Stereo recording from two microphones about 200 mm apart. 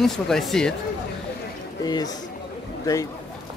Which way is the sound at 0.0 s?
Centre (ahead or behind).